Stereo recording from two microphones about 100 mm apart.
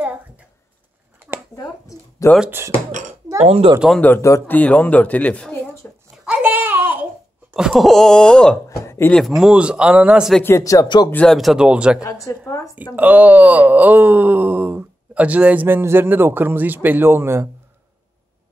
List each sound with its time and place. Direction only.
1.6 s speech: 35° left (ahead or behind)
3.3 s speech: 90° right
4.5 s speech: 15° left (ahead or behind)
5.8 s a sound: 25° left (ahead or behind)
6.2 s babbling: 15° right (ahead or behind)
7.5 s speech: 5° right (ahead or behind)
8.6 s speech: 30° left (ahead or behind)
9.1 s speech: centre (ahead or behind)
10.4 s speech: 30° left (ahead or behind)
11.2 s speech: centre (ahead or behind)
12.3 s speech: 30° left (ahead or behind)
12.9 s speech: 15° right (ahead or behind)